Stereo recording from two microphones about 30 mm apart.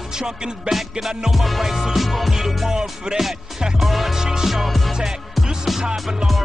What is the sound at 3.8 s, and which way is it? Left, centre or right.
Music, centre.